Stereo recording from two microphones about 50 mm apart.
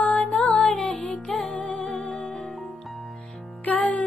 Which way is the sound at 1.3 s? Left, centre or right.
Centre.